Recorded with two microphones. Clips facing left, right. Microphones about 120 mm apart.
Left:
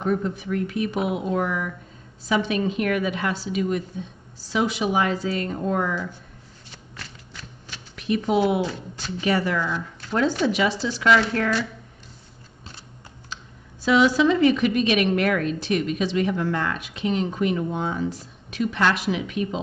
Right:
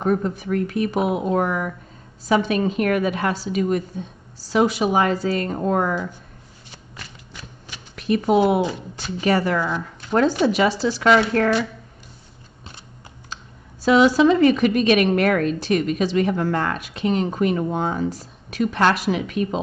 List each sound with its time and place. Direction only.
0.0 s a woman's voice: 45° right (ahead or behind)
7.0 s a sound: 15° right (ahead or behind)
7.9 s a woman's voice: 45° right (ahead or behind)
9.8 s a sound: 15° right (ahead or behind)
10.4 s speech: 40° right (ahead or behind)
13.8 s a woman's voice: 40° right (ahead or behind)